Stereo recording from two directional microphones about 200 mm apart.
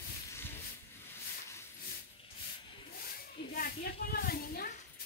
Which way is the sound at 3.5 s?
50° left (ahead or behind).